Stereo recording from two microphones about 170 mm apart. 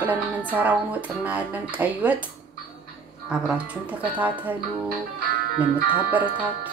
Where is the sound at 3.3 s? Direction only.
5° right (ahead or behind).